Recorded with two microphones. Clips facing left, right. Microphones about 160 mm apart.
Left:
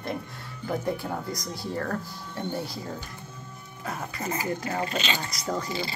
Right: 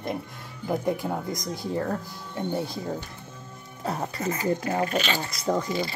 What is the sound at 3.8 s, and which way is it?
Speech, 30° right (ahead or behind).